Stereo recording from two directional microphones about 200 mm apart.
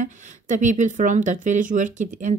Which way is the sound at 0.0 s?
40° right (ahead or behind).